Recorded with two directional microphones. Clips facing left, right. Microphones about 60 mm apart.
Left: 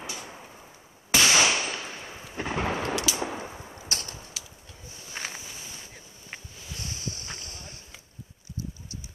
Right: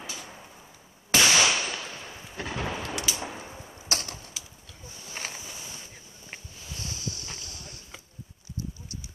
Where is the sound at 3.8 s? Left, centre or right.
Right.